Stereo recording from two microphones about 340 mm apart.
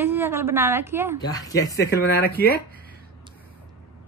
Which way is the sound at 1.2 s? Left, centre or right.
Centre.